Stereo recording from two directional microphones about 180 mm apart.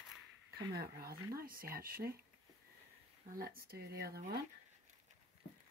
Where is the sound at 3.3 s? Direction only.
55° right (ahead or behind).